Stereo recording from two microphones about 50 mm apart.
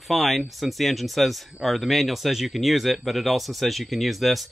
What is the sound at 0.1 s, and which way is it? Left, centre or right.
Speech, centre.